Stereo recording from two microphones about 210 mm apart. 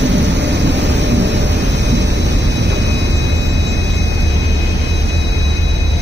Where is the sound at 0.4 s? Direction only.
55° right (ahead or behind).